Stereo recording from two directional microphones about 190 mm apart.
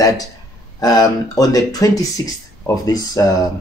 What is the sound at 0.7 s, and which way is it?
Speech, 20° left (ahead or behind).